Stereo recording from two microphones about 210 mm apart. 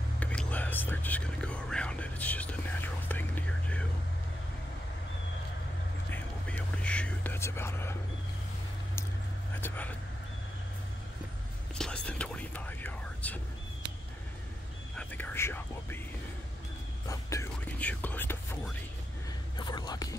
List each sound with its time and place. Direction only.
0.2 s whispering: 5° left (ahead or behind)
6.0 s whispering: 10° left (ahead or behind)
9.6 s vehicle: 10° left (ahead or behind)
11.7 s whispering: 5° left (ahead or behind)
15.0 s whispering: 10° left (ahead or behind)
17.1 s whispering: 15° left (ahead or behind)